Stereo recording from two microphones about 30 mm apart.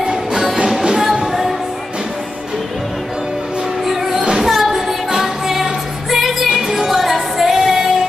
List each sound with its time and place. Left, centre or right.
0.0 s music: right
1.2 s music: centre
3.8 s music: centre